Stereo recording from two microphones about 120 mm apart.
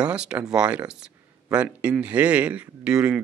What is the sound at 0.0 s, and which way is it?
Speech, 10° right (ahead or behind).